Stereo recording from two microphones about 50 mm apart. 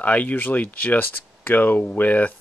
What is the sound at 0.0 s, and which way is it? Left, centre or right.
Speech, left.